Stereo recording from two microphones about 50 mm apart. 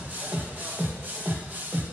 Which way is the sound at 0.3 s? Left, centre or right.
Right.